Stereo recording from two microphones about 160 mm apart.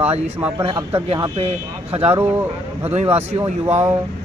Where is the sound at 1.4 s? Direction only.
40° right (ahead or behind).